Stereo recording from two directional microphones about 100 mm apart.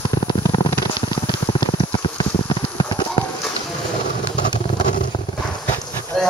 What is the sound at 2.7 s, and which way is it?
Clip-clop, 45° left (ahead or behind).